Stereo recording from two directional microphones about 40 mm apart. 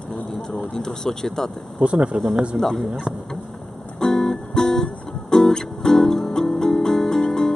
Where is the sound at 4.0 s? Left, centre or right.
Centre.